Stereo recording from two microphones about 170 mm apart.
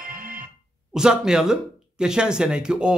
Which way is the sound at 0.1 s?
55° right (ahead or behind).